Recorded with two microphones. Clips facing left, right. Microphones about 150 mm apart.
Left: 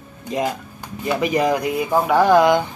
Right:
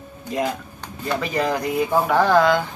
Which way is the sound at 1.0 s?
15° left (ahead or behind).